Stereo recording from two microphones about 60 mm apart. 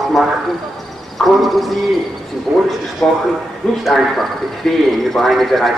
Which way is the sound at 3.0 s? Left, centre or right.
Centre.